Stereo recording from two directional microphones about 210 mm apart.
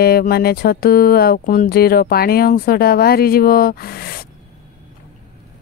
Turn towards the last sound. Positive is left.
turn(degrees=50)  # may be behind; listen again after turning